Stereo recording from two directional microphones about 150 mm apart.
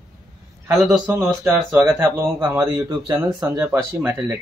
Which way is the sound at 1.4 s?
20° right (ahead or behind).